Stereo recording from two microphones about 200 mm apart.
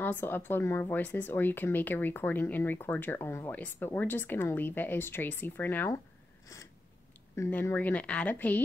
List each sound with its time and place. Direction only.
0.0 s speech: 10° left (ahead or behind)
6.4 s a sound: 15° left (ahead or behind)
7.3 s speech: 10° left (ahead or behind)